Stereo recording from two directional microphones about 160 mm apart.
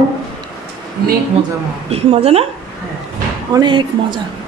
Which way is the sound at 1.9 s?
40° right (ahead or behind).